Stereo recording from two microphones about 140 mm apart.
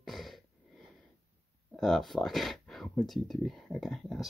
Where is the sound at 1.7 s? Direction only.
Centre (ahead or behind).